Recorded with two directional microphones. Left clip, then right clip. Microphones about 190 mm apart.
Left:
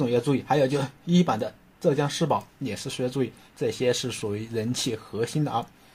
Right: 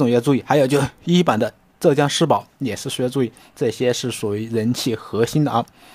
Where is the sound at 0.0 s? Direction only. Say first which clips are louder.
Right 7 dB; 40° right (ahead or behind).